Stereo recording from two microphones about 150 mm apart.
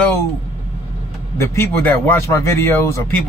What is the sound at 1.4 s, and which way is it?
Speech, 15° left (ahead or behind).